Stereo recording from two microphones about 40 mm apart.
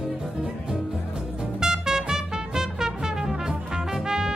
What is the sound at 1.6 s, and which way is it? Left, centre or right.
Music, centre.